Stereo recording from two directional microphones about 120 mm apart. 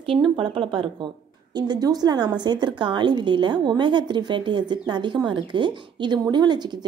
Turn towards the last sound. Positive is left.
turn(degrees=-35)  # may be behind; listen again after turning